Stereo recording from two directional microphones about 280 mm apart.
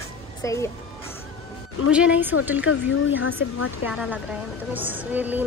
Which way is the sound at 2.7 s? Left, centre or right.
Left.